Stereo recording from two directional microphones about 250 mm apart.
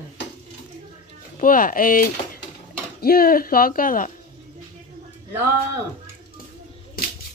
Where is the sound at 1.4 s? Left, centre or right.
Left.